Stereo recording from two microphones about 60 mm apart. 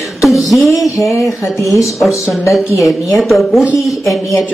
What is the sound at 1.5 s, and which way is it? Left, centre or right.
Speech, left.